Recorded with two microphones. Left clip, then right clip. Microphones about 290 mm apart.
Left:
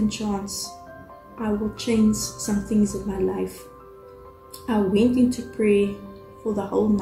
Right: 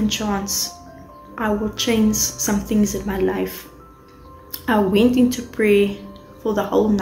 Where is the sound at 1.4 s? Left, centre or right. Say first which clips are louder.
Right 6 dB; centre.